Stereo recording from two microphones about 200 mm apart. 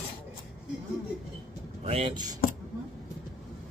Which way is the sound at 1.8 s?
30° right (ahead or behind).